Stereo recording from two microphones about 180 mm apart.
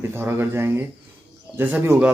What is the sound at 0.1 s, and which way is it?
A man's voice, 10° right (ahead or behind).